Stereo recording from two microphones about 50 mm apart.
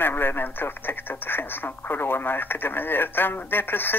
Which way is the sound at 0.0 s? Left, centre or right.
Left.